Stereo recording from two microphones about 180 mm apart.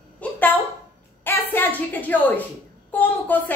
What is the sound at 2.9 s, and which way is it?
Speech, 10° left (ahead or behind).